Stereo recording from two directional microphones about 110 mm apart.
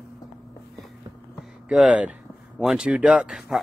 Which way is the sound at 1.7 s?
5° right (ahead or behind).